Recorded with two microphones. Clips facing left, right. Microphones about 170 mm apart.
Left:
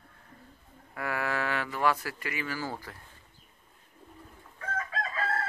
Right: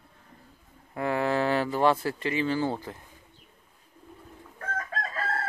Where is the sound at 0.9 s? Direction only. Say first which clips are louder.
Right 6 dB; 25° right (ahead or behind).